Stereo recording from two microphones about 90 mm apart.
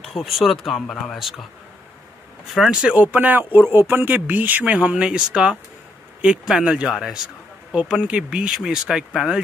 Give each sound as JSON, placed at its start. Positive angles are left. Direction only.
{"t": 0.0, "sound": "speech", "side_deg": 0}
{"t": 2.5, "sound": "speech", "side_deg": -5}